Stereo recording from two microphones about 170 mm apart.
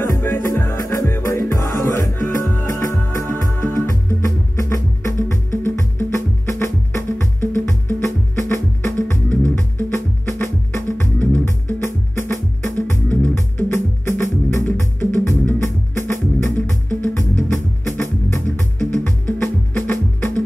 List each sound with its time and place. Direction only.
0.0 s music: 15° left (ahead or behind)